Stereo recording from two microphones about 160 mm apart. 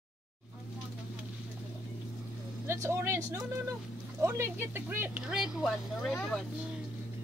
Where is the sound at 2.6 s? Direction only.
15° right (ahead or behind); by 6.3 s 5° left (ahead or behind).